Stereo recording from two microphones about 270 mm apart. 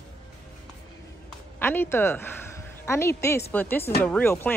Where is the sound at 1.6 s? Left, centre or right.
Centre.